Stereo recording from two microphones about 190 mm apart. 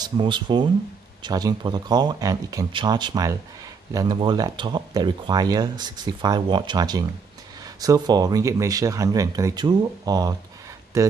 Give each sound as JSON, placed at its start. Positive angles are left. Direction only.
{"t": 0.0, "sound": "speech", "side_deg": -25}